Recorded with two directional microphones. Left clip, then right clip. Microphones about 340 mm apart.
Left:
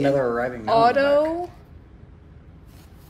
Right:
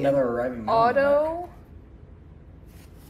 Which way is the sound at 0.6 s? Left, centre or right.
Left.